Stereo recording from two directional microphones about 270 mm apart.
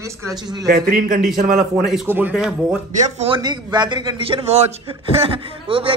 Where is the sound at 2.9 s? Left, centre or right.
Right.